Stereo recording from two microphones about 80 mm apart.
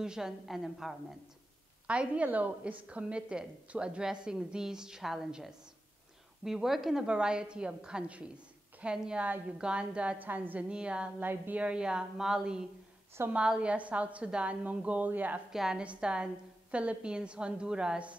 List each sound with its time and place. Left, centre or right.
0.0 s a woman's voice: centre
1.9 s a woman's voice: centre
15.5 s a woman's voice: centre